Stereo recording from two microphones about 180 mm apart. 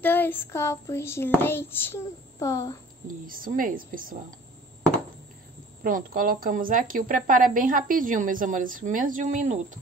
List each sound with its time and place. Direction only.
0.0 s a child's voice: 10° left (ahead or behind)
3.3 s a woman's voice: 50° right (ahead or behind)
5.9 s a woman's voice: 50° right (ahead or behind)